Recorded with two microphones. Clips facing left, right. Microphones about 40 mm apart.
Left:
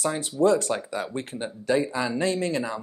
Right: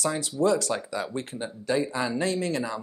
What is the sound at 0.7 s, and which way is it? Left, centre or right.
Speech, left.